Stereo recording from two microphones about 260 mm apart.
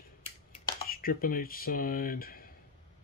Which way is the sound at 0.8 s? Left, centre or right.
Left.